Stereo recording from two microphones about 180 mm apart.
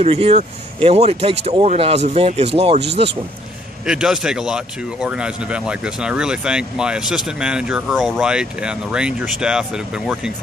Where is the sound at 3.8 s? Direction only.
5° right (ahead or behind).